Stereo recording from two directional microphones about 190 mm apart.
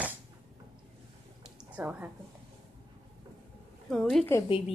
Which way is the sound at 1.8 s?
10° right (ahead or behind).